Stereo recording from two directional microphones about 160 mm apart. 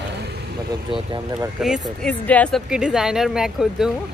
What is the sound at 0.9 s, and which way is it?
Speech, 25° right (ahead or behind).